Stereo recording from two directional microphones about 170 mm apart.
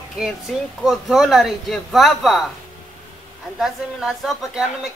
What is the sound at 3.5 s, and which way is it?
Speech, centre (ahead or behind).